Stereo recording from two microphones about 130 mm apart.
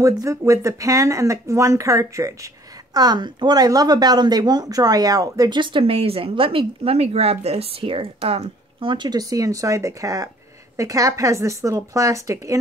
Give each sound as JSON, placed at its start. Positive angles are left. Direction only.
{"t": 0.0, "sound": "speech", "side_deg": -25}
{"t": 8.9, "sound": "speech", "side_deg": -35}